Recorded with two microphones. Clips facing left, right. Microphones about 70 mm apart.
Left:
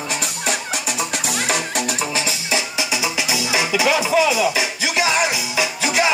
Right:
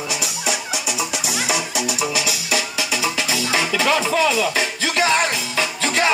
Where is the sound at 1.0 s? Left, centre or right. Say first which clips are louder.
Left 1 dB; left.